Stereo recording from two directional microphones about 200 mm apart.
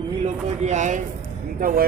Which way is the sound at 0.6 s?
35° right (ahead or behind).